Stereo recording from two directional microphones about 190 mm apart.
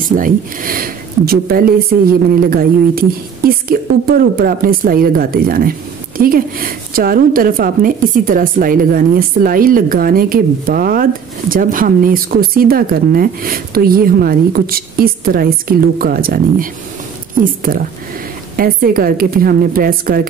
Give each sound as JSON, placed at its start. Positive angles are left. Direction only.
{"t": 0.1, "sound": "speech", "side_deg": -45}
{"t": 18.6, "sound": "speech", "side_deg": -50}